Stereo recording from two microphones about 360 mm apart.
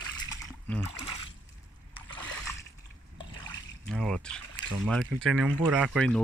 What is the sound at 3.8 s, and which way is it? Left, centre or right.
Speech, centre.